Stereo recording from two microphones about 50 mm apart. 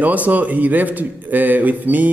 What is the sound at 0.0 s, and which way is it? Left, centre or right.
A man's voice, right.